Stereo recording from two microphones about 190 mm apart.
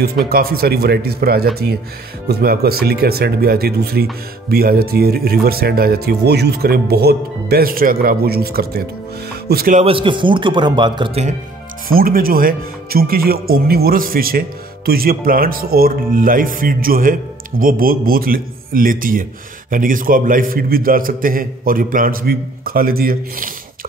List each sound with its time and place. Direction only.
0.3 s speech: 50° right (ahead or behind)
9.8 s a man's voice: 30° right (ahead or behind)
11.9 s speech: 50° right (ahead or behind)